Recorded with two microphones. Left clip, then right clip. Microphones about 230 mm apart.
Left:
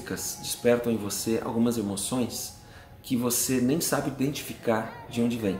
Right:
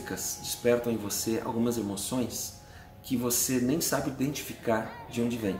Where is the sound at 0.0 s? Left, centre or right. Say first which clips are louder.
Left 1 dB; centre.